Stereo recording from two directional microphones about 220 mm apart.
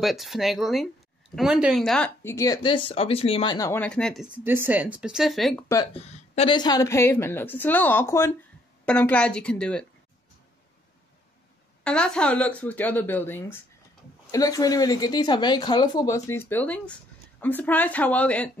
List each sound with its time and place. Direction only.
0.0 s speech: centre (ahead or behind)
5.9 s speech: 30° left (ahead or behind); by 9.8 s 5° left (ahead or behind)
11.8 s speech: 5° left (ahead or behind)